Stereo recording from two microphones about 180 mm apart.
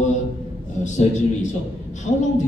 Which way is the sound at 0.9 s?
40° left (ahead or behind).